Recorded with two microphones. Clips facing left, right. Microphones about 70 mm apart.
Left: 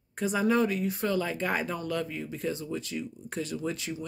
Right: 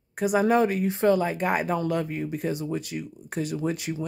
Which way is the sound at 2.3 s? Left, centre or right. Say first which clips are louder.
Right 4 dB; centre.